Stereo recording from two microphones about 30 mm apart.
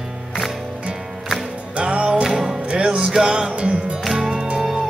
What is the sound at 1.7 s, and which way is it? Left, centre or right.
Music, right.